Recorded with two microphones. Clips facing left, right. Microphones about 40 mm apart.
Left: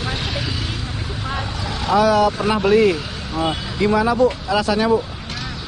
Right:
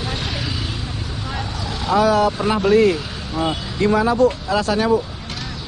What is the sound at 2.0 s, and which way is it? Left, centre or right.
Speech, left.